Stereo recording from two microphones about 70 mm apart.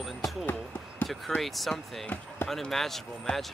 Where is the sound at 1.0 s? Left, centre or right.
Centre.